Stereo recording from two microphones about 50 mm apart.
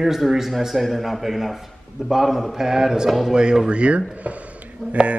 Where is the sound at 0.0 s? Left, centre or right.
Centre.